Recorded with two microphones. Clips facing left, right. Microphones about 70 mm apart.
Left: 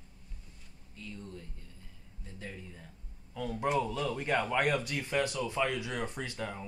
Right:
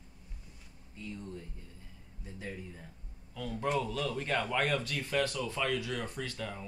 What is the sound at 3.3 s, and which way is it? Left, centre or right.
Speech, centre.